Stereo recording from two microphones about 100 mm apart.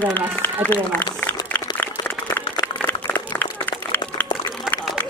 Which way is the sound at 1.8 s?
20° left (ahead or behind).